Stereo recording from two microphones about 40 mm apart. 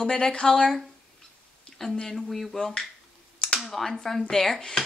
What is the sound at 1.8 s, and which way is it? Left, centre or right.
A woman's voice, centre.